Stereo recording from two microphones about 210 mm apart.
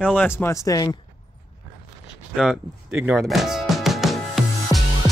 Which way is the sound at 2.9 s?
10° right (ahead or behind).